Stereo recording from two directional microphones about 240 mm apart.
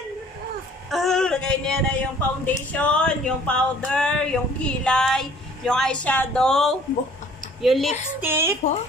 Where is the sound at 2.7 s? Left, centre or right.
Centre.